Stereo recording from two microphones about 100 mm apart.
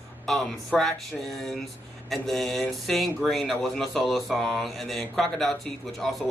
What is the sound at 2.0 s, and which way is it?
Speech, centre (ahead or behind).